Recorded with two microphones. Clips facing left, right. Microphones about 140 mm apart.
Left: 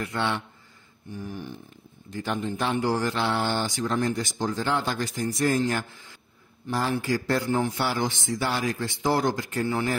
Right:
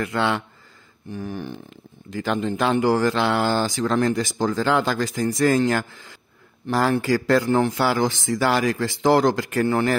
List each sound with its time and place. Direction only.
0.0 s speech: 90° right; by 9.9 s 70° right (ahead or behind)